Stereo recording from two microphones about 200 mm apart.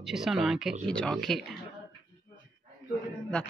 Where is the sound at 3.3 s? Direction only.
5° left (ahead or behind).